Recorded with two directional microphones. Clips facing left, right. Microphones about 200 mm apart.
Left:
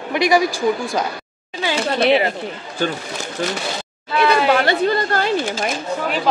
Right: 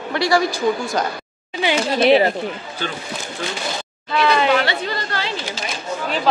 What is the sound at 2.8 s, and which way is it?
Speech, 45° left (ahead or behind).